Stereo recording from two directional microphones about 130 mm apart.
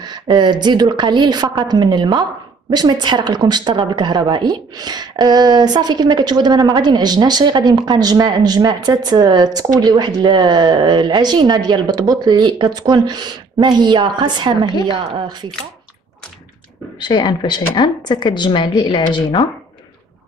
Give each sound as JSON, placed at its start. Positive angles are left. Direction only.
{"t": 0.0, "sound": "a woman's voice", "side_deg": -35}
{"t": 17.0, "sound": "speech", "side_deg": 35}